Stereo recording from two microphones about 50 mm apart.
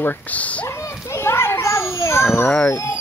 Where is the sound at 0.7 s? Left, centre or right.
Left.